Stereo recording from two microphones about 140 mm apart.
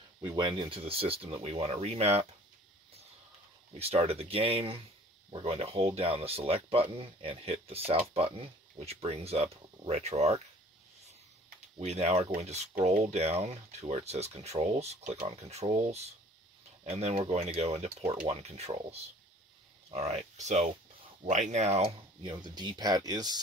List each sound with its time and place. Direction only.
0.4 s speech: 35° right (ahead or behind)
3.7 s speech: 45° right (ahead or behind)
11.8 s speech: 50° right (ahead or behind); by 23.4 s 30° right (ahead or behind)